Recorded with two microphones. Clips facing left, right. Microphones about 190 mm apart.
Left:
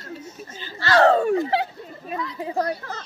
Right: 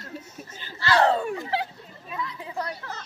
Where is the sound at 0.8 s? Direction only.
35° left (ahead or behind).